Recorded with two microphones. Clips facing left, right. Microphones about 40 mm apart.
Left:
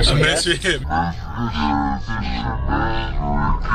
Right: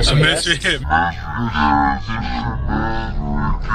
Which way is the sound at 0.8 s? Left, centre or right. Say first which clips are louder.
Right 5 dB; right.